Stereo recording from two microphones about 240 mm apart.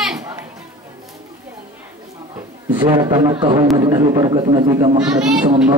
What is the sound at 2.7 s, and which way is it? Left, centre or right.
A man's voice, centre.